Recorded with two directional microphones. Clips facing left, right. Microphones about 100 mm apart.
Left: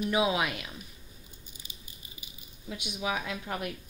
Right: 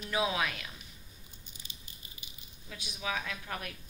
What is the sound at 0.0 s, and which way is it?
Speech, 20° left (ahead or behind).